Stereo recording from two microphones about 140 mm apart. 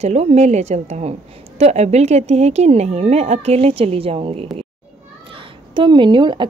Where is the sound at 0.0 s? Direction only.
50° right (ahead or behind).